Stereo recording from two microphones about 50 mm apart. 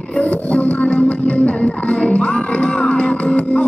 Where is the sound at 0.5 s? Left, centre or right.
Left.